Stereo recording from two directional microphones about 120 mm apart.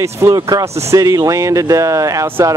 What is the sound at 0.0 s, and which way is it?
Speech, 25° right (ahead or behind).